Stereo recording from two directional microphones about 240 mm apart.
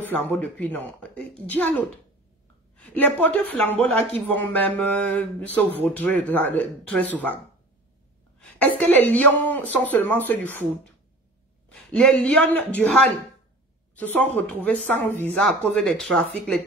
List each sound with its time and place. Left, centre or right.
0.0 s speech: centre
8.4 s speech: centre
11.7 s a man's voice: centre